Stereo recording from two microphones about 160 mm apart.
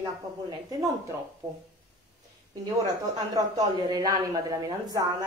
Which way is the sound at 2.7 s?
20° right (ahead or behind).